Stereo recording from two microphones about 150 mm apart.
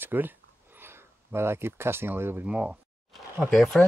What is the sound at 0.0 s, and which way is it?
Speech, 15° right (ahead or behind).